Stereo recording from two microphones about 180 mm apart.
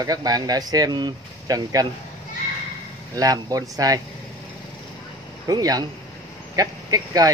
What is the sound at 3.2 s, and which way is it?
Speech, 20° right (ahead or behind).